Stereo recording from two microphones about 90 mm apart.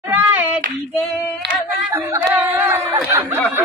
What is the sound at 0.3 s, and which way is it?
Child singing, 15° right (ahead or behind).